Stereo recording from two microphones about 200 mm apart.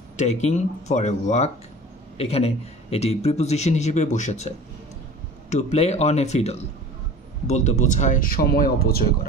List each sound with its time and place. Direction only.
0.2 s a man's voice: 35° left (ahead or behind)